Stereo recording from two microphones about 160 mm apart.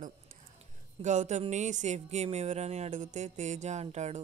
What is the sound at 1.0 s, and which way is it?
Speech, 50° right (ahead or behind).